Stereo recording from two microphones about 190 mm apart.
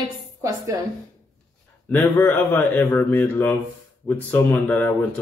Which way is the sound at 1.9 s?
10° left (ahead or behind).